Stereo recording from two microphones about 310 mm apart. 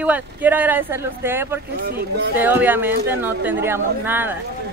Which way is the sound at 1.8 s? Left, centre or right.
Right.